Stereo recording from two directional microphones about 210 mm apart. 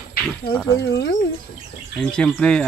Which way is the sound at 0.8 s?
55° left (ahead or behind).